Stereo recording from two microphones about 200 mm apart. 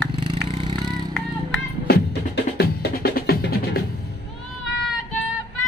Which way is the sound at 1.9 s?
50° left (ahead or behind).